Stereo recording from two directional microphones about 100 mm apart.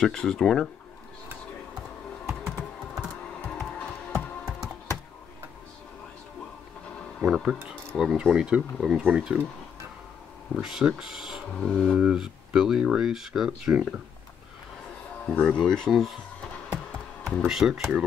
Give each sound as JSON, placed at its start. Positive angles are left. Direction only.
{"t": 0.0, "sound": "speech", "side_deg": 5}
{"t": 2.2, "sound": "computer keyboard", "side_deg": -5}
{"t": 7.2, "sound": "speech", "side_deg": -5}
{"t": 10.5, "sound": "speech", "side_deg": -5}
{"t": 11.9, "sound": "speech", "side_deg": -5}
{"t": 15.2, "sound": "speech", "side_deg": 10}
{"t": 17.5, "sound": "speech", "side_deg": -5}